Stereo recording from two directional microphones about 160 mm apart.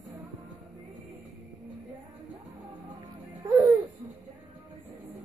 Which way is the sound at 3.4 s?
20° right (ahead or behind).